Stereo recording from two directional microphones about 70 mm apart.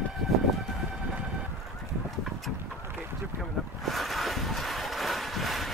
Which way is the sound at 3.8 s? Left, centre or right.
Centre.